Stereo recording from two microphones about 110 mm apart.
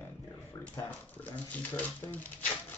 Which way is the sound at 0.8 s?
15° left (ahead or behind).